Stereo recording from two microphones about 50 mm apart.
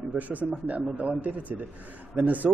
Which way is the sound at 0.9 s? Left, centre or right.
Right.